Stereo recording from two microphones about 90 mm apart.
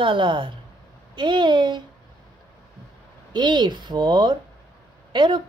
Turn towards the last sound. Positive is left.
turn(degrees=-60)  # may be behind; listen again after turning